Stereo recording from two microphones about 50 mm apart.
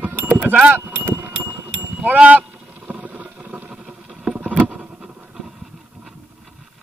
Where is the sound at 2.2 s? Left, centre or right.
Right.